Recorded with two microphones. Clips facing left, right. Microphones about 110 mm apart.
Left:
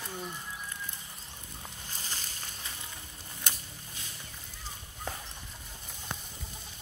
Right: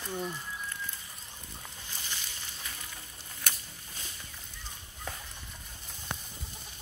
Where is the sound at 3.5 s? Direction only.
20° left (ahead or behind).